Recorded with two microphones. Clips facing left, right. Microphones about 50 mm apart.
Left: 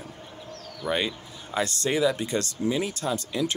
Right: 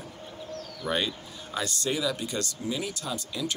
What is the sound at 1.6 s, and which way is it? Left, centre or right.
Speech, left.